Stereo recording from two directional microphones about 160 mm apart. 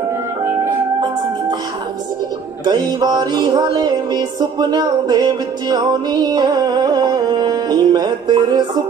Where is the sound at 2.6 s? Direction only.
25° right (ahead or behind).